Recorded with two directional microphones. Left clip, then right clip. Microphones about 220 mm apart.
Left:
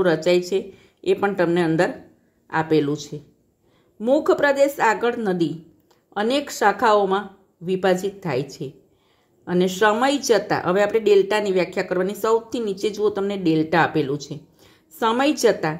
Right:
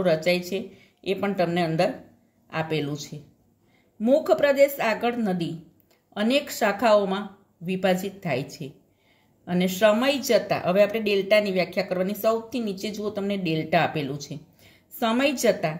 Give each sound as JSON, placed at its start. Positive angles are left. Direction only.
{"t": 0.0, "sound": "a woman's voice", "side_deg": 25}